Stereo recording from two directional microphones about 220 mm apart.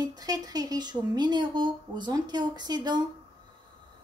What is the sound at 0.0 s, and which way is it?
Speech, 15° right (ahead or behind).